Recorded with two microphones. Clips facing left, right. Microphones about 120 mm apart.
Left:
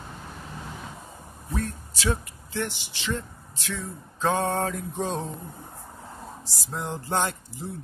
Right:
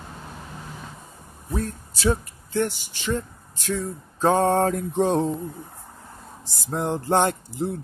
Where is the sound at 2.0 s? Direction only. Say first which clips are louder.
Right 5 dB; 45° right (ahead or behind).